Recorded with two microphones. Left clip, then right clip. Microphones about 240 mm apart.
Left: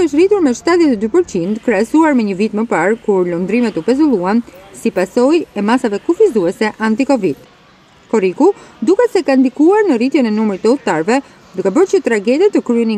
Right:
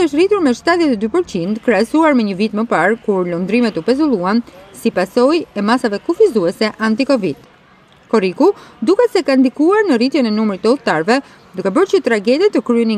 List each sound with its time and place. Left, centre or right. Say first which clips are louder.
0.0 s speech: left 2 dB; centre
8.4 s speech: left 1 dB; centre